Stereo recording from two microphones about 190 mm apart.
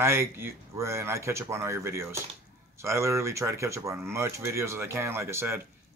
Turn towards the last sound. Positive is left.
turn(degrees=-15)  # may be behind; listen again after turning